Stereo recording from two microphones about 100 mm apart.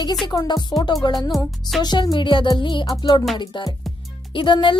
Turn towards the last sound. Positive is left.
turn(degrees=50)  # may be behind; listen again after turning